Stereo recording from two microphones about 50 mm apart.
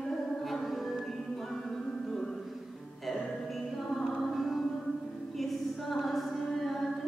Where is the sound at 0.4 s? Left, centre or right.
Centre.